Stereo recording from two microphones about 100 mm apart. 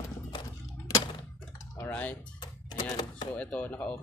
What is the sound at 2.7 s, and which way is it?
Speech, 45° left (ahead or behind).